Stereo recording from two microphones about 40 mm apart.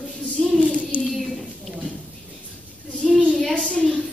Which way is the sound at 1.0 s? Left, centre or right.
Centre.